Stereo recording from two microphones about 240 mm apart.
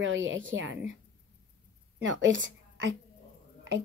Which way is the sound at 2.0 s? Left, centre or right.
Right.